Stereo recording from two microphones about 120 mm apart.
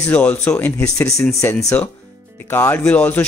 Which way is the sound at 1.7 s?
15° left (ahead or behind).